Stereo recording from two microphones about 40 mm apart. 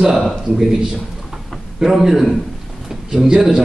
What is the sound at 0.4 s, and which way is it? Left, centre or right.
A man's voice, centre.